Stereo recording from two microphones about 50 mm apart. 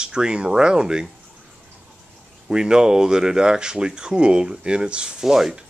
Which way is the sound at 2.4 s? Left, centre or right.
Centre.